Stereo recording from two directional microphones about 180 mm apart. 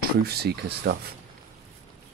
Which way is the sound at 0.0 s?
60° right (ahead or behind).